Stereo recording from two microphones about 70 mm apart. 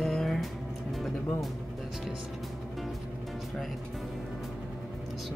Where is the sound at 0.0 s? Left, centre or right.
Centre.